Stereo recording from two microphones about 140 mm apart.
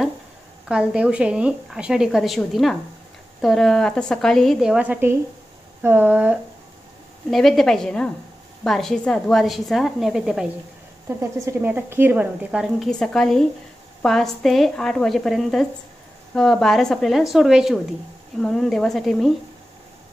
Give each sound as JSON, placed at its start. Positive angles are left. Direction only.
{"t": 0.7, "sound": "a woman's voice", "side_deg": -5}
{"t": 7.2, "sound": "a woman's voice", "side_deg": 0}
{"t": 11.1, "sound": "speech", "side_deg": -20}
{"t": 12.4, "sound": "a woman's voice", "side_deg": 0}